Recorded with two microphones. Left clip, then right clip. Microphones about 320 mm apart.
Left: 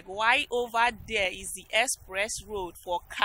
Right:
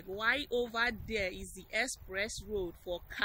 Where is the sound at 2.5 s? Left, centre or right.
Left.